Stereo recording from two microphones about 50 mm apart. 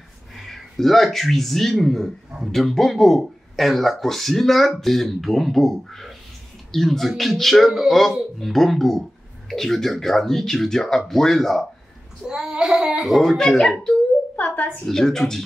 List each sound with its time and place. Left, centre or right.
0.4 s speech: centre
12.3 s child singing: centre
13.2 s speech: centre
14.3 s a sound: left
14.9 s speech: centre